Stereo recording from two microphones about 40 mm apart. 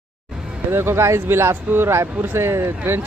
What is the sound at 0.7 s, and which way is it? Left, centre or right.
Speech, right.